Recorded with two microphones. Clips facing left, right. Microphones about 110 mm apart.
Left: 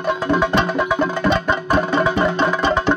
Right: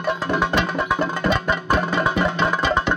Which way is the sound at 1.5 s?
30° left (ahead or behind).